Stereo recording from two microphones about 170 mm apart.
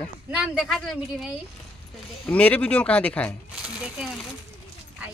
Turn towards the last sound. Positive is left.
turn(degrees=-5)  # may be behind; listen again after turning